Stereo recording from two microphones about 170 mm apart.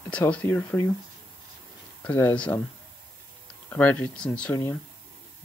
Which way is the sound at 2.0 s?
10° left (ahead or behind).